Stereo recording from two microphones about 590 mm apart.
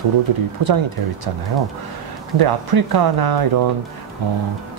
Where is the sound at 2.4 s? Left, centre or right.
Right.